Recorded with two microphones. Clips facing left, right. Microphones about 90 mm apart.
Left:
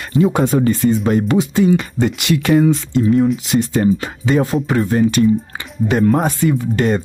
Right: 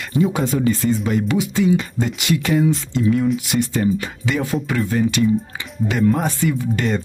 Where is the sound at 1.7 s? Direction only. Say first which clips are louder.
Left 4 dB; 60° left (ahead or behind).